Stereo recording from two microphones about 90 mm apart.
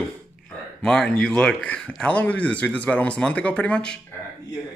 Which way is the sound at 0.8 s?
10° left (ahead or behind).